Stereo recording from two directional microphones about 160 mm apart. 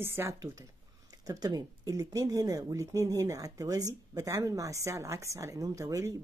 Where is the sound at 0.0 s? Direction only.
15° right (ahead or behind).